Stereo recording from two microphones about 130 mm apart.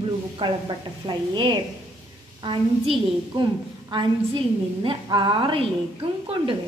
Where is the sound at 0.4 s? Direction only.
40° right (ahead or behind).